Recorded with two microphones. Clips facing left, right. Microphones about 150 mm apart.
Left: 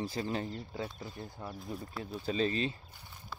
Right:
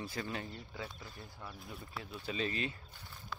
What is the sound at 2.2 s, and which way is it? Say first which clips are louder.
Speech: left 6 dB; 35° left (ahead or behind).